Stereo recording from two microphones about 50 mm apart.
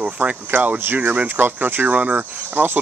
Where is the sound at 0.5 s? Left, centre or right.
Right.